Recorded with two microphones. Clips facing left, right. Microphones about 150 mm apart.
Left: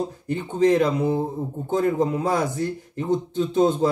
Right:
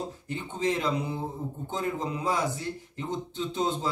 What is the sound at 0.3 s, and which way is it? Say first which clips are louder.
A man's voice: left 11 dB; 50° left (ahead or behind).